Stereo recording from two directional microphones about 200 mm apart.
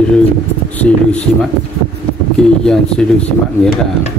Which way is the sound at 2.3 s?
5° left (ahead or behind).